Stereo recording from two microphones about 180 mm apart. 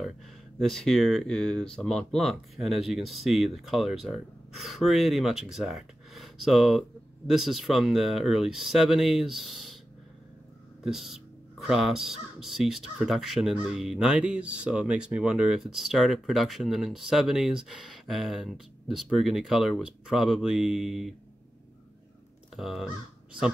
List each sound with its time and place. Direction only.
0.6 s speech: centre (ahead or behind)
10.8 s speech: centre (ahead or behind)
22.6 s speech: centre (ahead or behind)